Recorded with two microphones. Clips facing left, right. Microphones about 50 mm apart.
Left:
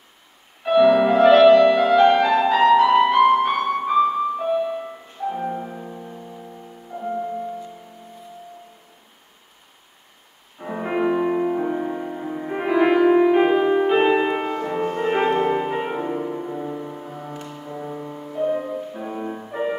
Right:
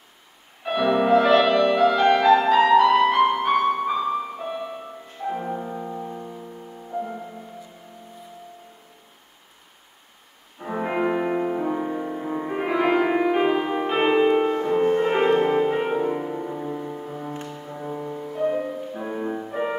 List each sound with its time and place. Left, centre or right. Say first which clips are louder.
0.7 s music: left 5 dB; centre
3.8 s music: left 5 dB; centre
10.6 s music: left 1 dB; centre
12.3 s music: right 2 dB; centre
12.5 s music: left 4 dB; centre
14.3 s music: right 4 dB; centre
15.0 s music: even; centre